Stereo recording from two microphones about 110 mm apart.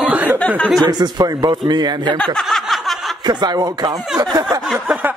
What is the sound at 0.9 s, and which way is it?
Speech, 35° right (ahead or behind).